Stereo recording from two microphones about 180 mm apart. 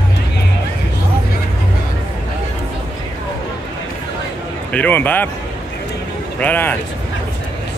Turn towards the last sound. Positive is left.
turn(degrees=10)  # may be behind; listen again after turning